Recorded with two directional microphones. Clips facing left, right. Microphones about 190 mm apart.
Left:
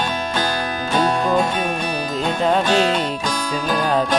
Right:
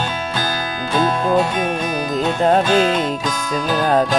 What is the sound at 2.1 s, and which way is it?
Music, 45° right (ahead or behind).